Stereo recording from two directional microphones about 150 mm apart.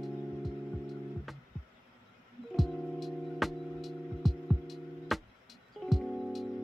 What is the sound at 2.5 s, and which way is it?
Music, centre (ahead or behind).